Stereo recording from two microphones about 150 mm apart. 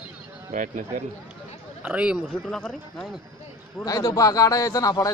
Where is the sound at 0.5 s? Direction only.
60° right (ahead or behind).